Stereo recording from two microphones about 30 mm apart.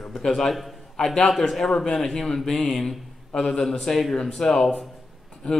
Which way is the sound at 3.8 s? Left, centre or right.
Centre.